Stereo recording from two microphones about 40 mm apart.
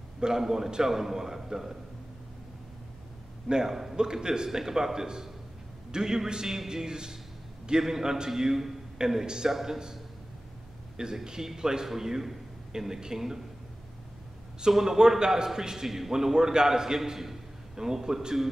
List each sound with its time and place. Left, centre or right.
0.2 s a man's voice: centre
3.4 s a man's voice: centre
11.0 s a man's voice: centre
14.7 s a man's voice: centre